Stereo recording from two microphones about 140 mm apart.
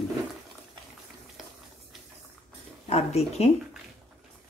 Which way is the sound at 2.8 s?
50° left (ahead or behind).